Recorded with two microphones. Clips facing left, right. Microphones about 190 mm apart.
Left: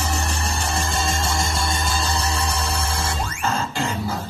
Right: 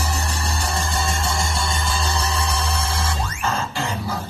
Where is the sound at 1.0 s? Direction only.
35° left (ahead or behind).